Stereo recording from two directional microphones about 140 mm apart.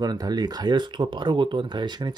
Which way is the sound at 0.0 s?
30° right (ahead or behind).